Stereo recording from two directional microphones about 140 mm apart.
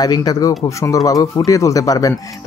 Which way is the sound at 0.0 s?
30° left (ahead or behind).